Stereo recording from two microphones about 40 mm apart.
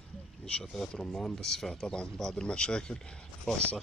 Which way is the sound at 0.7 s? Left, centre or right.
Centre.